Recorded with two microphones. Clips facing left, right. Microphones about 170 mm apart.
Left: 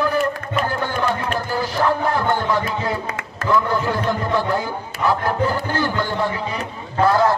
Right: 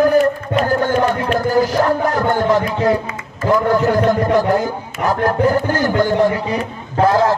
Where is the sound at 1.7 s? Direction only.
40° right (ahead or behind).